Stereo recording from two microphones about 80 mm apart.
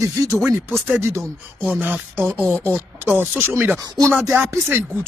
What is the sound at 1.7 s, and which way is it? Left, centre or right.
Speech, right.